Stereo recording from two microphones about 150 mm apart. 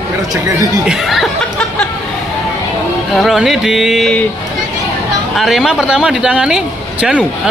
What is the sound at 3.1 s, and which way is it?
Speech, centre (ahead or behind).